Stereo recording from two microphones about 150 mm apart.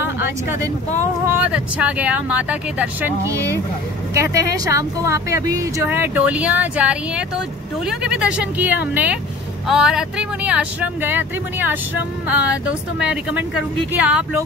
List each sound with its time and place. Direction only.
0.0 s speech: 15° right (ahead or behind)
3.3 s speech: 20° right (ahead or behind)